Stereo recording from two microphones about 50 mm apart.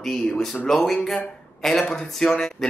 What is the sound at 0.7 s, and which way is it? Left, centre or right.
Speech, centre.